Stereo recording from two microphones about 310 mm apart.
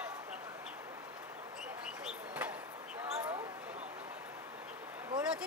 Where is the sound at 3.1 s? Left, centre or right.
Centre.